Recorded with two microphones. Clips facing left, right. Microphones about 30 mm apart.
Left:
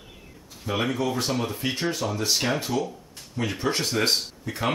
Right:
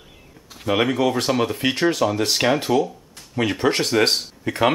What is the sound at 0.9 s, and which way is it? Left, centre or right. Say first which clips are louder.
Speech: right 6 dB; right.